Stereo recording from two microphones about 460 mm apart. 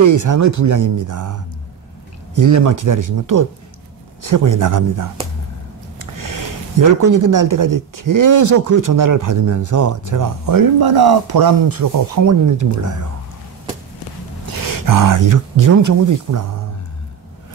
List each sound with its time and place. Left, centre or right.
0.0 s speech: right
5.9 s a sound: right
7.0 s speech: right
14.4 s speech: right